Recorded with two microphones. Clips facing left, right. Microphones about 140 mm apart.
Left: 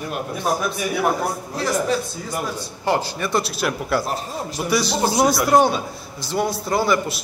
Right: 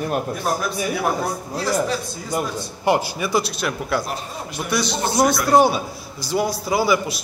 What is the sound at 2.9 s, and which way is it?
A man's voice, 10° right (ahead or behind).